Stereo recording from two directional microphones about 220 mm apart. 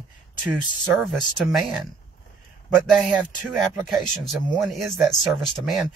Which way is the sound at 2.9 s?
Centre (ahead or behind).